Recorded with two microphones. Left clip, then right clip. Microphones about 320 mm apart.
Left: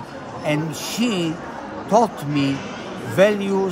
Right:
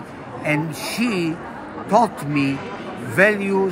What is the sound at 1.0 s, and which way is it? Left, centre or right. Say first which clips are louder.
Speech: even; left.